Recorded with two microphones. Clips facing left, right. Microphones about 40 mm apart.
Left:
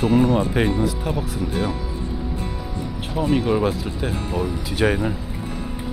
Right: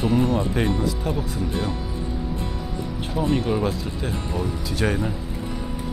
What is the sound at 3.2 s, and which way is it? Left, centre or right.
Speech, centre.